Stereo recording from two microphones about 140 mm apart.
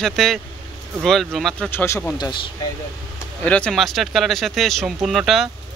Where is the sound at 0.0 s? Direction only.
Centre (ahead or behind).